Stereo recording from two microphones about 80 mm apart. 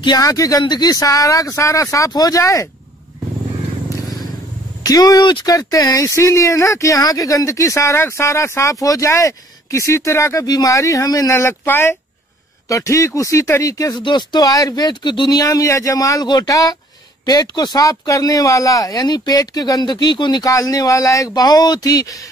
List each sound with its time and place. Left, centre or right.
0.2 s speech: left
0.6 s speech: left
2.4 s speech: left
4.8 s speech: left
5.2 s speech: left
5.5 s speech: left
10.4 s speech: left
11.3 s speech: left
12.6 s speech: left
13.9 s speech: left
14.5 s speech: left
20.4 s speech: left